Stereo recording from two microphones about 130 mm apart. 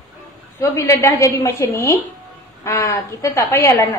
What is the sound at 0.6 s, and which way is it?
A woman's voice, 20° left (ahead or behind).